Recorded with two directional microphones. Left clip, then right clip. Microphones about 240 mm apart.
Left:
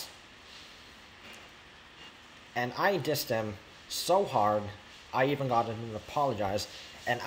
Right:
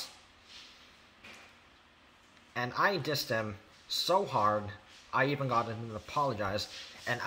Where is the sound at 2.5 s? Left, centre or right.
Centre.